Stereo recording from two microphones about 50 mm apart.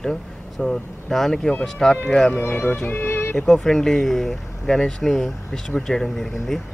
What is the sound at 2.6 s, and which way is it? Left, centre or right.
Music, left.